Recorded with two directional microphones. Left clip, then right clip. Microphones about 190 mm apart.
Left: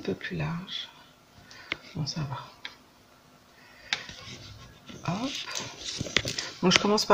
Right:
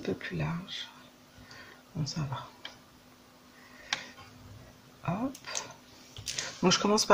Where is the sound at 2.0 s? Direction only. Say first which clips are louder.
Left 2 dB; centre (ahead or behind).